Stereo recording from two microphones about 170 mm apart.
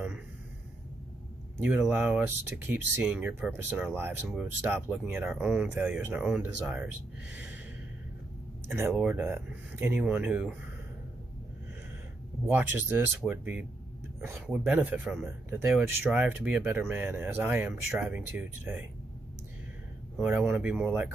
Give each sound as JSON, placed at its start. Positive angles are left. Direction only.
{"t": 1.6, "sound": "speech", "side_deg": -10}
{"t": 7.3, "sound": "gasp", "side_deg": -5}
{"t": 8.6, "sound": "speech", "side_deg": -15}
{"t": 12.4, "sound": "speech", "side_deg": -10}
{"t": 20.2, "sound": "speech", "side_deg": -10}